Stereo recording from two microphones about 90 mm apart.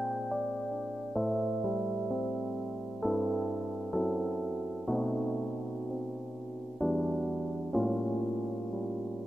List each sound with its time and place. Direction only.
1.1 s music: centre (ahead or behind)
3.0 s music: centre (ahead or behind)
6.8 s music: centre (ahead or behind)